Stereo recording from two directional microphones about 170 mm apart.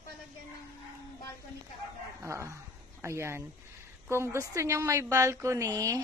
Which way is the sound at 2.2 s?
15° right (ahead or behind).